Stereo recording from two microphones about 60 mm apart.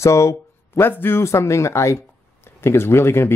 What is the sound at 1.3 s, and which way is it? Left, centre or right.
Speech, left.